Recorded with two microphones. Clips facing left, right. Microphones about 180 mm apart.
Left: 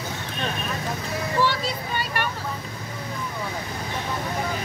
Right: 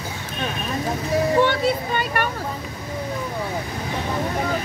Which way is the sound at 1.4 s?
55° right (ahead or behind).